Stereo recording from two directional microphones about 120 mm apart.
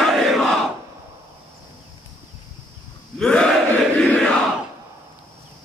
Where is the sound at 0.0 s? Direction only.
Centre (ahead or behind).